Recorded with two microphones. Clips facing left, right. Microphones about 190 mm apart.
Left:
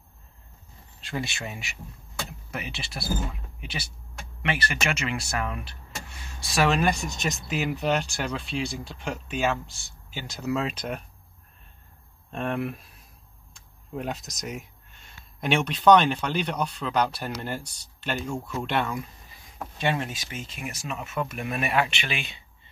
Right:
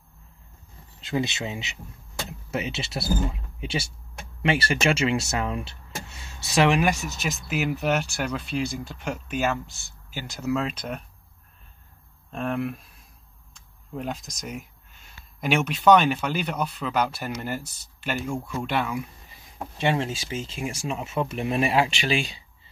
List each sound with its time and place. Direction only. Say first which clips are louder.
1.0 s speech: right 5 dB; 20° right (ahead or behind)
6.7 s speech: right 1 dB; 10° right (ahead or behind)
12.3 s speech: right 1 dB; centre (ahead or behind)
13.9 s speech: even; centre (ahead or behind)
19.8 s speech: right 3 dB; 25° right (ahead or behind)